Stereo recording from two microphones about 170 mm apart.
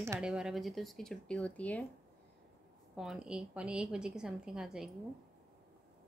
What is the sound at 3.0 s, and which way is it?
A woman's voice, 5° right (ahead or behind).